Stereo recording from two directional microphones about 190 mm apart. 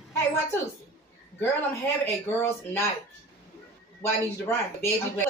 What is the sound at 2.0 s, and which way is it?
Speech, 10° left (ahead or behind).